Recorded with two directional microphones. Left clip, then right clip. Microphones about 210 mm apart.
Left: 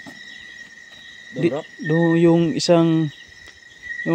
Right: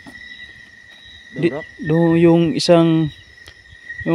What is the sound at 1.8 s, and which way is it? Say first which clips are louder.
Speech: right 3 dB; 25° right (ahead or behind).